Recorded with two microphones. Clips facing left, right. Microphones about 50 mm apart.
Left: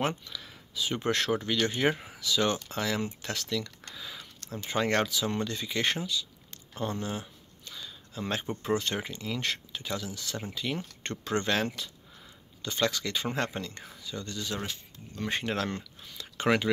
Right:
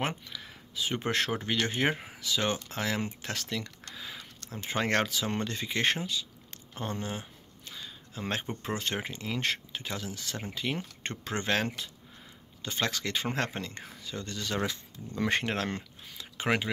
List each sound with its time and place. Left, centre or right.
0.0 s speech: centre
0.7 s speech: right
6.7 s a sound: right
8.6 s speech: right
15.4 s speech: right
16.2 s speech: right